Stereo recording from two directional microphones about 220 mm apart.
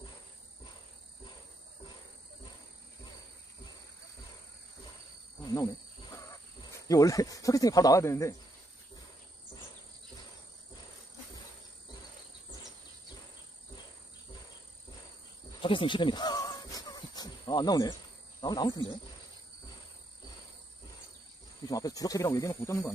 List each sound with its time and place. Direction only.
6.1 s speech: 15° left (ahead or behind)
15.6 s snake: 25° left (ahead or behind)
18.4 s speech: 20° left (ahead or behind)
21.6 s speech: 15° left (ahead or behind)